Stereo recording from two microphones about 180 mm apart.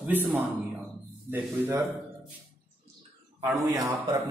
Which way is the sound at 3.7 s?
20° right (ahead or behind).